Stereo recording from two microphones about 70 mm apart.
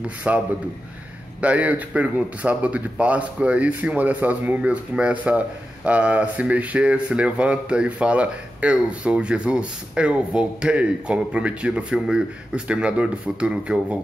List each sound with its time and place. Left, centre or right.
0.0 s speech: centre
1.4 s speech: right